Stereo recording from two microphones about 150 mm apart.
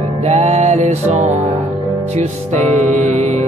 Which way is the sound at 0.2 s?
45° right (ahead or behind).